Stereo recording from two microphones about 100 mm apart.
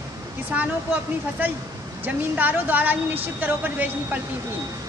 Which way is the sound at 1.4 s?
15° right (ahead or behind).